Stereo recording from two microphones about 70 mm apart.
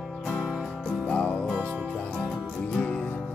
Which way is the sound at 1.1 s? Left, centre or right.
Centre.